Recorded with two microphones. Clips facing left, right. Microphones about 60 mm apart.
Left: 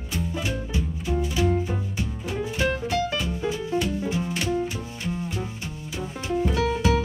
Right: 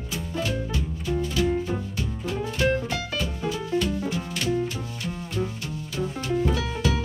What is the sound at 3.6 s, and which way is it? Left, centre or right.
Music, centre.